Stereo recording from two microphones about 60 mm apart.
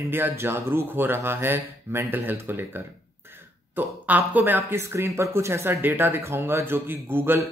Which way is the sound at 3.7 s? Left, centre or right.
Right.